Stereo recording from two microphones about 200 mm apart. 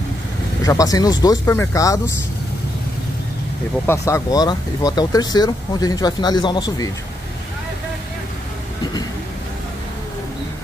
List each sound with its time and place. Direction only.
0.7 s speech: 20° left (ahead or behind)
3.8 s speech: 15° left (ahead or behind)